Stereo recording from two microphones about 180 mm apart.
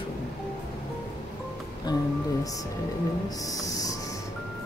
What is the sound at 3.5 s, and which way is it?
Owl, 20° left (ahead or behind).